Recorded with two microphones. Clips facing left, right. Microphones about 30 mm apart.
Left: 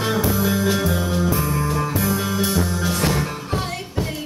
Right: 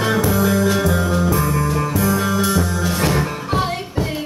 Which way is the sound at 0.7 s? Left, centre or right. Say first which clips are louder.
Right 3 dB; centre.